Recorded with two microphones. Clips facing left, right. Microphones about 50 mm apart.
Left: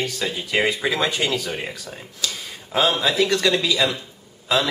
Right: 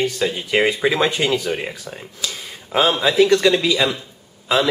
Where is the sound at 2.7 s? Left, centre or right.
Centre.